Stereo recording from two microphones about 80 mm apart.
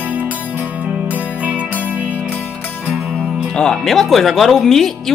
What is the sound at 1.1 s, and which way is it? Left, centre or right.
Music, centre.